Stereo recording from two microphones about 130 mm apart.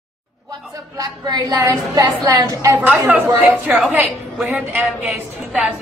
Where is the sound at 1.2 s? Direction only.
30° right (ahead or behind).